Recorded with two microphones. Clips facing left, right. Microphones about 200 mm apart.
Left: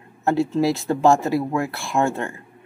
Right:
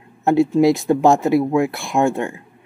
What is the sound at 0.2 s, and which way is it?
Speech, 15° right (ahead or behind).